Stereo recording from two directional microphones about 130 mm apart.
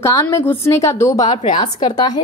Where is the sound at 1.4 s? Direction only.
40° left (ahead or behind).